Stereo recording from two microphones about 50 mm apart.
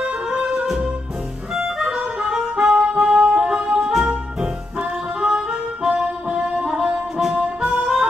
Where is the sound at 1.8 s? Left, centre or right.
Centre.